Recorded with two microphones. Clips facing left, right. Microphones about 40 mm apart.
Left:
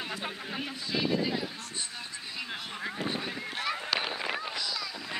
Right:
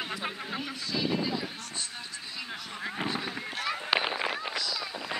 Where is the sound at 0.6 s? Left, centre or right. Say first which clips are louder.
Left 2 dB; centre.